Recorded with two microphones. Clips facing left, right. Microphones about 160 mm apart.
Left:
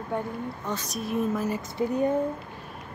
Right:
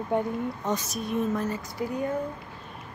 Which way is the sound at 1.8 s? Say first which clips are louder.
Left 4 dB; 30° left (ahead or behind).